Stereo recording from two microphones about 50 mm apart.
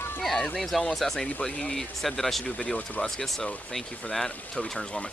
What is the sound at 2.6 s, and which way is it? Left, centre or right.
Speech, centre.